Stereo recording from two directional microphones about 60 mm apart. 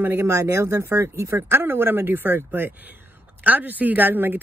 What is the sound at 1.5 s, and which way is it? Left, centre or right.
A woman's voice, right.